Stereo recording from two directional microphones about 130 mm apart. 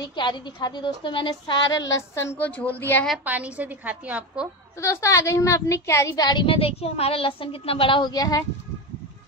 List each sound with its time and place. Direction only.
0.0 s a woman's voice: 35° left (ahead or behind); by 3.1 s 15° left (ahead or behind)
3.3 s a woman's voice: 10° right (ahead or behind)
4.8 s a woman's voice: 25° left (ahead or behind)